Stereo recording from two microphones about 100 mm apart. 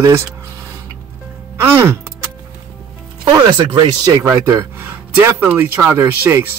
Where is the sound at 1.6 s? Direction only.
25° right (ahead or behind).